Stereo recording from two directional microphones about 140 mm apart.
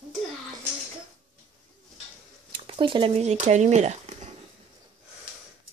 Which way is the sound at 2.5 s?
40° right (ahead or behind).